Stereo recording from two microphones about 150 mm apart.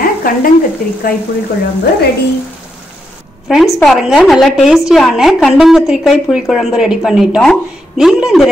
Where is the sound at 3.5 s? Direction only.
Centre (ahead or behind).